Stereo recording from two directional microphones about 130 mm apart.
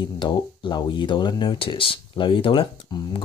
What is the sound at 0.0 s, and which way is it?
Speech, 35° left (ahead or behind).